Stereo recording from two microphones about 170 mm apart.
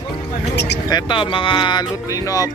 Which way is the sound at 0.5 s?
80° left.